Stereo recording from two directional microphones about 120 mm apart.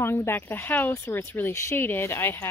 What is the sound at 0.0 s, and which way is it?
Speech, 20° left (ahead or behind).